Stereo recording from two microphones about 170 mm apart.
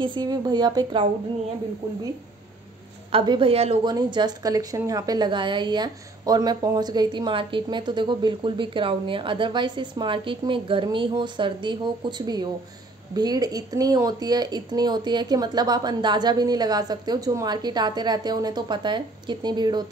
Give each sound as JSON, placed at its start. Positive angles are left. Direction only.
{"t": 0.0, "sound": "a woman's voice", "side_deg": -25}
{"t": 3.1, "sound": "a woman's voice", "side_deg": -30}